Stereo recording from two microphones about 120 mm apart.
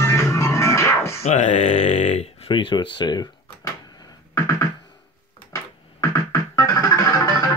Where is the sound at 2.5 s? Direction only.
40° left (ahead or behind).